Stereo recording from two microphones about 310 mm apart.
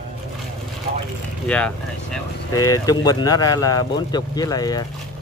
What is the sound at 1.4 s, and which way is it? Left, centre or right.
Speech, centre.